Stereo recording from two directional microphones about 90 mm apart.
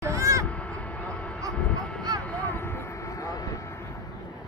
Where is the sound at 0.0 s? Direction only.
35° right (ahead or behind).